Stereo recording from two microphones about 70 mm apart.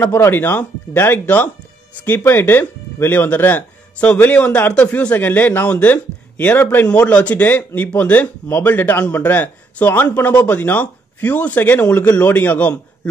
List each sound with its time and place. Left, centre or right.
0.1 s speech: left